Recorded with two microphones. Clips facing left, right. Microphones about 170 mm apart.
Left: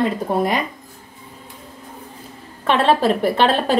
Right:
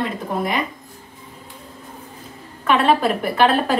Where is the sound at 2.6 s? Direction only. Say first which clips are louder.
Left 1 dB; 30° left (ahead or behind).